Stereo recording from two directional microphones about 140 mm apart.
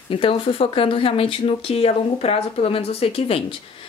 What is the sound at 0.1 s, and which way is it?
Speech, 40° left (ahead or behind).